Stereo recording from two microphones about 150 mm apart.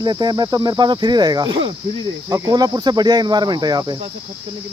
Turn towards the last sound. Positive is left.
turn(degrees=-25)  # may be behind; listen again after turning